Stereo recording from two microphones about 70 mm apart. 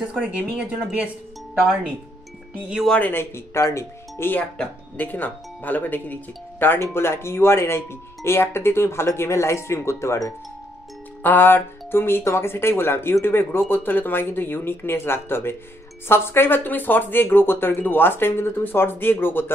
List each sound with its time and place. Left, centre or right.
0.0 s speech: centre
3.0 s speech: left
6.8 s speech: left
11.2 s speech: left